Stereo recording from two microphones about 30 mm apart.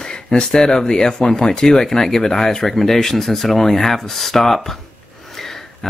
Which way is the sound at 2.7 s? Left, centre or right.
Centre.